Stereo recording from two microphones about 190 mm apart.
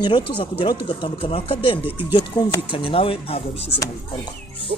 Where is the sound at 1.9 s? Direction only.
10° right (ahead or behind).